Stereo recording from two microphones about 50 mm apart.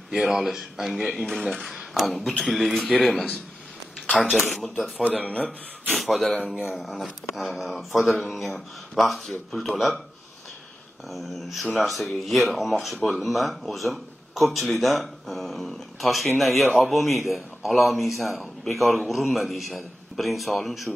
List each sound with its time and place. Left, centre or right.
0.1 s speech: centre
5.2 s a man's voice: left
5.9 s speech: centre
6.4 s speech: centre
11.1 s speech: centre